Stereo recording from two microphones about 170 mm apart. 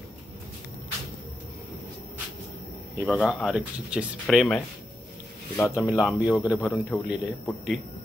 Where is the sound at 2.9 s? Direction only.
5° right (ahead or behind).